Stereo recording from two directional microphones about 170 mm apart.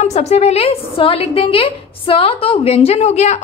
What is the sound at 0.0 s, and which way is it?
A woman's voice, 40° left (ahead or behind).